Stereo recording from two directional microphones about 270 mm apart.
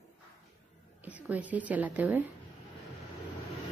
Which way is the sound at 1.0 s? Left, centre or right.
Centre.